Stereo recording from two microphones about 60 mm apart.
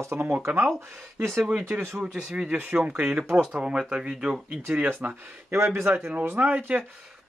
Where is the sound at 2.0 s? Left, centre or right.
Right.